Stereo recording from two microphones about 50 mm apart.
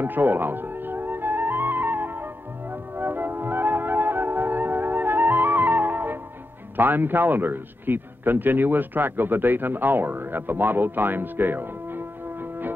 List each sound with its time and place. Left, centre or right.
0.0 s music: right
2.7 s flute: right
6.8 s a man's voice: right